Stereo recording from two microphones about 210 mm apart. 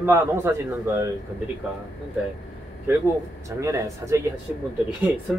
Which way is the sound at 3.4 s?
15° right (ahead or behind).